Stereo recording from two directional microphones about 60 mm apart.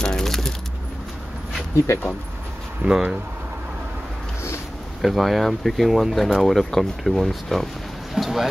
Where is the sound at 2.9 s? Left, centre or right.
Centre.